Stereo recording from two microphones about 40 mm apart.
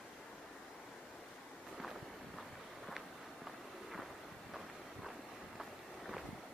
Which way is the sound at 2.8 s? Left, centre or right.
Centre.